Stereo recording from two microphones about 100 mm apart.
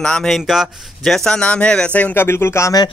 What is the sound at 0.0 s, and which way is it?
Speech, 5° left (ahead or behind).